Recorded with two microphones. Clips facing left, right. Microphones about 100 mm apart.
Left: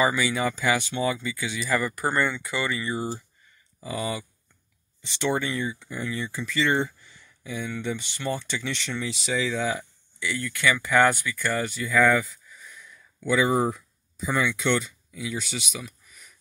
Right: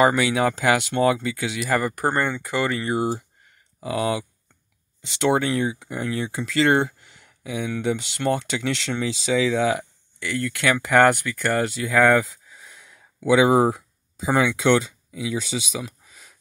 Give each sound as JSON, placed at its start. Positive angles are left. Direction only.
{"t": 0.0, "sound": "speech", "side_deg": -65}
{"t": 3.8, "sound": "speech", "side_deg": -85}
{"t": 10.2, "sound": "speech", "side_deg": -60}